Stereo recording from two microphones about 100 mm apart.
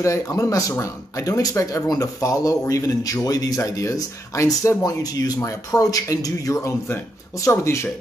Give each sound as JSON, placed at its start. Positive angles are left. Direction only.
{"t": 0.0, "sound": "speech", "side_deg": 30}